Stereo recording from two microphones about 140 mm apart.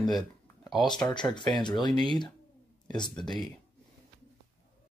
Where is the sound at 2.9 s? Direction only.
30° left (ahead or behind).